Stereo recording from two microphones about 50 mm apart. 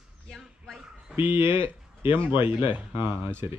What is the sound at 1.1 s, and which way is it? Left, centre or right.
Speech, right.